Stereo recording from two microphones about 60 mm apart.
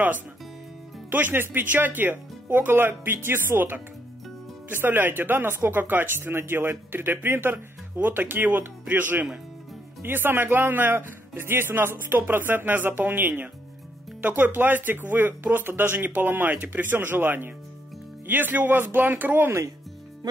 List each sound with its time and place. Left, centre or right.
1.1 s speech: right